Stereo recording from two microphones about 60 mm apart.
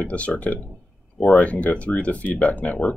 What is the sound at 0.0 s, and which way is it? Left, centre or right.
Speech, left.